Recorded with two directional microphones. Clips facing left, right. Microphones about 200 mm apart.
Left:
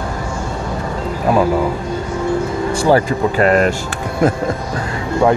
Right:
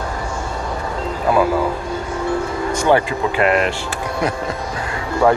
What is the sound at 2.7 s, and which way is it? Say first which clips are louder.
Speech: left 2 dB; 35° left (ahead or behind).